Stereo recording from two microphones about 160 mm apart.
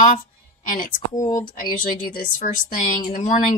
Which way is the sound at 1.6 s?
60° left (ahead or behind).